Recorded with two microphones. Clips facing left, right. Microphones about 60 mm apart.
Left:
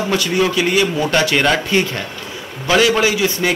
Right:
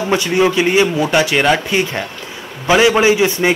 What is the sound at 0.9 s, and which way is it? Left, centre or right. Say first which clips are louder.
A man's voice: right 2 dB; centre.